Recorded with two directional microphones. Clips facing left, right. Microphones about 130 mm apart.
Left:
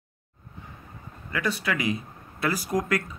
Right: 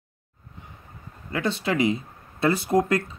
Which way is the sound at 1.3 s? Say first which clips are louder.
Right 3 dB; 25° right (ahead or behind).